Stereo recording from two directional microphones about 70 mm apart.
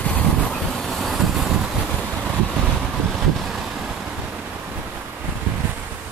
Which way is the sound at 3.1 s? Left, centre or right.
Centre.